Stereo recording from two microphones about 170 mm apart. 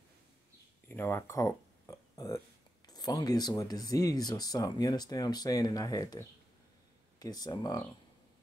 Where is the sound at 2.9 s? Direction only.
20° left (ahead or behind).